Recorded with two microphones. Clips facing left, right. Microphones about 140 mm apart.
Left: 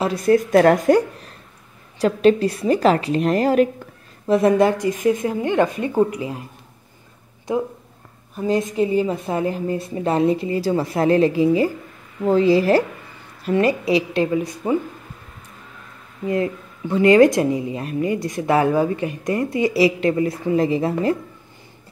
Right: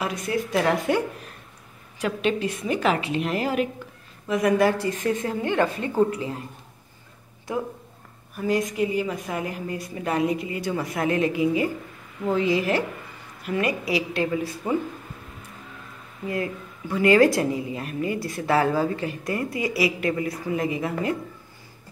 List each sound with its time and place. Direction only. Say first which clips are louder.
0.0 s a woman's voice: left 6 dB; 30° left (ahead or behind)
0.3 s a woman's voice: left 10 dB; 50° left (ahead or behind)
4.3 s speech: left 5 dB; 25° left (ahead or behind)
8.4 s a woman's voice: left 4 dB; 25° left (ahead or behind)
16.3 s a woman's voice: left 6 dB; 25° left (ahead or behind)